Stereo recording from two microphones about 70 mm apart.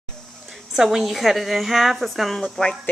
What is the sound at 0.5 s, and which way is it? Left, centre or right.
A woman's voice, centre.